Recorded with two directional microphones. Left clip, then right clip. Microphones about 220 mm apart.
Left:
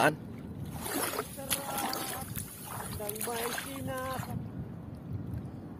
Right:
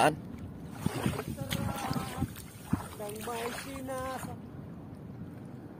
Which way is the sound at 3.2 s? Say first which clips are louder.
Left 2 dB; 45° left (ahead or behind).